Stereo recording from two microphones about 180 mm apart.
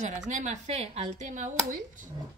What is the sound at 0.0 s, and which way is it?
Speech, 40° right (ahead or behind).